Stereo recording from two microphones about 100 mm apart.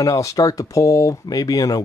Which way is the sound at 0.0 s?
35° left (ahead or behind).